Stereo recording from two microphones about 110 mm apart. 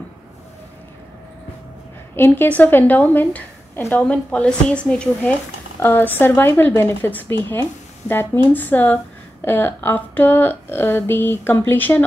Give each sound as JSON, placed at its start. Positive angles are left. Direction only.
{"t": 2.1, "sound": "a woman's voice", "side_deg": 20}